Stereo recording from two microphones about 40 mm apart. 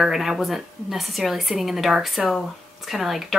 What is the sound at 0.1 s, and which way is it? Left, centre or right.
A woman's voice, centre.